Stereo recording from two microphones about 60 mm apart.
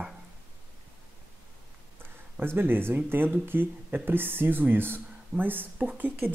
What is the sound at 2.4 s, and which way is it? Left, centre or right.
Speech, right.